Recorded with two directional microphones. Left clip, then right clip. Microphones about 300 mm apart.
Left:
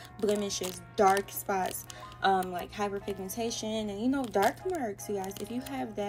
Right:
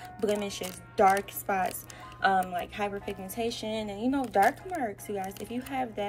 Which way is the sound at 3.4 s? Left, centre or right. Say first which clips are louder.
Right 2 dB; left.